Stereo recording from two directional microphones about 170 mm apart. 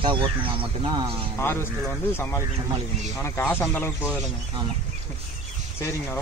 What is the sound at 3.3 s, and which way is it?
Speech, 15° left (ahead or behind).